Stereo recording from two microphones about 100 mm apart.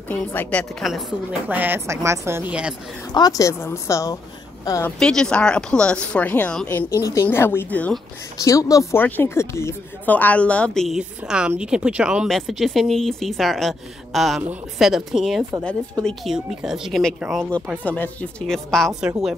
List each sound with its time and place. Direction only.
0.1 s speech: 15° left (ahead or behind)
1.5 s a woman's voice: 20° right (ahead or behind)
3.1 s a woman's voice: 40° left (ahead or behind)
4.9 s speech: 5° left (ahead or behind)
7.0 s a woman's voice: 30° left (ahead or behind)
8.5 s a woman's voice: 35° left (ahead or behind)
8.9 s speech: 20° left (ahead or behind)
10.1 s speech: 15° left (ahead or behind)
11.0 s speech: 10° right (ahead or behind)
12.3 s a woman's voice: centre (ahead or behind)
15.6 s speech: 10° left (ahead or behind)
16.3 s a woman's voice: 5° right (ahead or behind)
17.8 s speech: 15° left (ahead or behind)
18.5 s a woman's voice: 5° left (ahead or behind)